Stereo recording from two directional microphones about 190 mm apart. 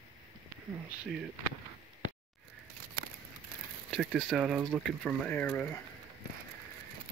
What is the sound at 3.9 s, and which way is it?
Speech, centre (ahead or behind).